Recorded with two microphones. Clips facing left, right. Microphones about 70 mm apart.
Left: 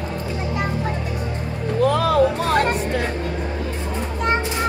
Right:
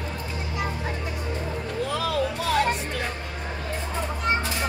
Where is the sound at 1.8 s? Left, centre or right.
Left.